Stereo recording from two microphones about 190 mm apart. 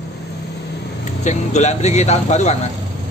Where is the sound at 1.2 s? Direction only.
35° left (ahead or behind).